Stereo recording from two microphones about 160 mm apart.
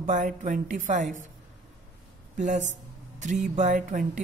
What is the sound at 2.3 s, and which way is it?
Speech, 50° right (ahead or behind).